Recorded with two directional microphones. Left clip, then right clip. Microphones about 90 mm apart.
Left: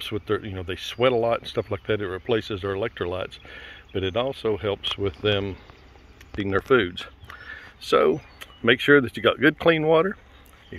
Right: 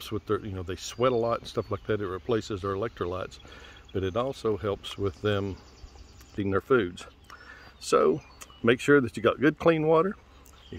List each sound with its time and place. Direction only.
0.1 s speech: 30° right (ahead or behind)
6.3 s speech: 20° right (ahead or behind)
6.7 s speech: 5° right (ahead or behind)
8.4 s speech: 20° right (ahead or behind)